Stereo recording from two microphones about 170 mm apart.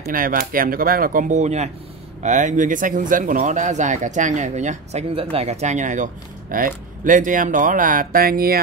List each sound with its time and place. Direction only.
0.1 s speech: 55° right (ahead or behind)